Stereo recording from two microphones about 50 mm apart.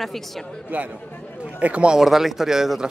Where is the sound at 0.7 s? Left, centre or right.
Right.